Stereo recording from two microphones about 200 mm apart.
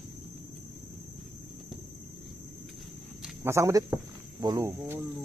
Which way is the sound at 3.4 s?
15° right (ahead or behind).